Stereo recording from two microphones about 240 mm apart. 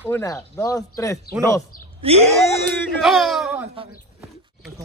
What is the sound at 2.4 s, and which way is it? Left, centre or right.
Speech, centre.